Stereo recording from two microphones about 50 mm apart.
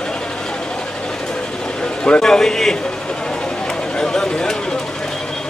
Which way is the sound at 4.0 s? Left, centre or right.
Centre.